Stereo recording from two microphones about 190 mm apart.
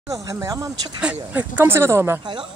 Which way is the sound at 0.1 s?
15° right (ahead or behind).